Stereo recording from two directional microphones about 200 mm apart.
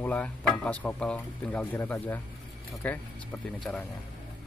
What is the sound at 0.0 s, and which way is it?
Speech, 5° left (ahead or behind).